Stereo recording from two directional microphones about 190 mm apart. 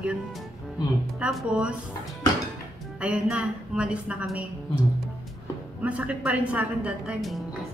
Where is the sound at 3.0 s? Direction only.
5° right (ahead or behind).